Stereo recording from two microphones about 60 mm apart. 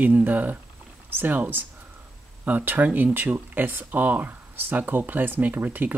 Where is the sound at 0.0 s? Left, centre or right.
Right.